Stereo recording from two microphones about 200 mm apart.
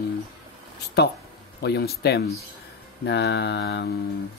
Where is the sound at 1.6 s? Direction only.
55° left (ahead or behind).